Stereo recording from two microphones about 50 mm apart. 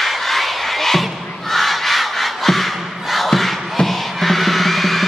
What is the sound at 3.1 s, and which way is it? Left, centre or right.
Music, centre.